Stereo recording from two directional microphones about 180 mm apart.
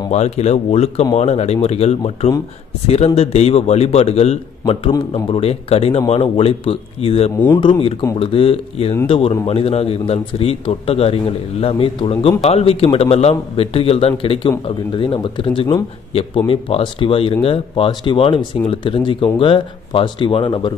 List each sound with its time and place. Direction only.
0.1 s a man's voice: 40° left (ahead or behind)